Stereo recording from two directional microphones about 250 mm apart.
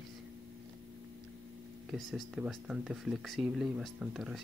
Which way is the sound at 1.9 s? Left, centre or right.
Centre.